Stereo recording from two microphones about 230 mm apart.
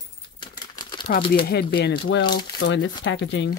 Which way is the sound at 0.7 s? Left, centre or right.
Centre.